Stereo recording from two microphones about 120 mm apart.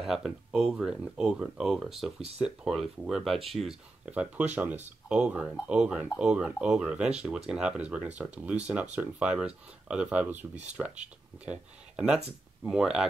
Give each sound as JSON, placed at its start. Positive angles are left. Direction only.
{"t": 0.0, "sound": "speech", "side_deg": -5}
{"t": 10.5, "sound": "speech", "side_deg": -70}
{"t": 10.8, "sound": "speech", "side_deg": -10}